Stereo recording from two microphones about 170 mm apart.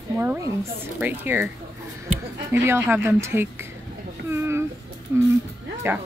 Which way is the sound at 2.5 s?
15° right (ahead or behind).